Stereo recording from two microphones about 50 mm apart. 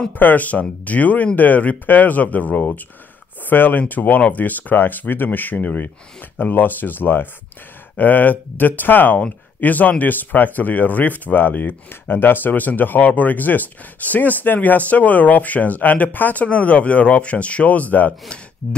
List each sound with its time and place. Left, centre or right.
0.2 s speech: left
16.4 s speech: left